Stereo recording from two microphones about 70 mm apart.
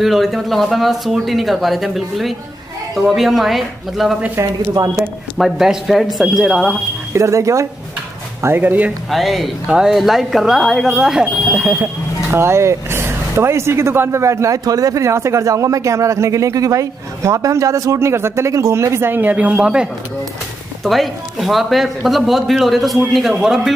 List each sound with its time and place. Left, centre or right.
0.0 s speech: centre
4.8 s speech: right
5.4 s speech: centre
7.2 s speech: right
8.4 s speech: right
9.1 s speech: centre
11.5 s speech: right
12.3 s speech: right
14.6 s speech: right; by 19.9 s centre
20.8 s speech: centre